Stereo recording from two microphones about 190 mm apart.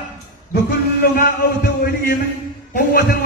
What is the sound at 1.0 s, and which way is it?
A man's voice, 50° left (ahead or behind).